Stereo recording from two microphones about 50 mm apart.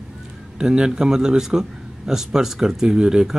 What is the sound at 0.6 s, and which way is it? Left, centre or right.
Speech, centre.